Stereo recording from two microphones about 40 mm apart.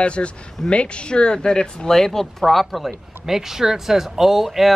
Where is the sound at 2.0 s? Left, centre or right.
Centre.